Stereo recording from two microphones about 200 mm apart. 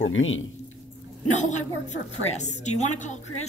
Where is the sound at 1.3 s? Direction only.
35° left (ahead or behind).